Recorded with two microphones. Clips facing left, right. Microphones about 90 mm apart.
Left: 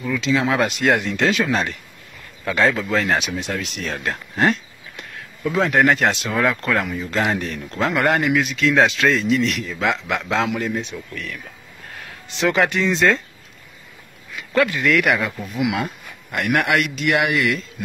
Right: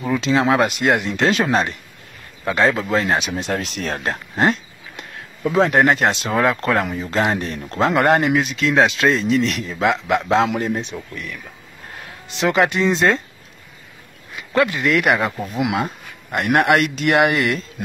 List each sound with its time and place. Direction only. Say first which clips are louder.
0.0 s speech: right 2 dB; 35° right (ahead or behind)
0.8 s speech: right 1 dB; 25° right (ahead or behind)
12.4 s speech: right 1 dB; 20° right (ahead or behind)
14.5 s speech: right 1 dB; 25° right (ahead or behind)